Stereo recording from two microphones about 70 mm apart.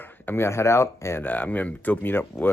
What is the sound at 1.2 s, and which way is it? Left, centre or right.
Speech, left.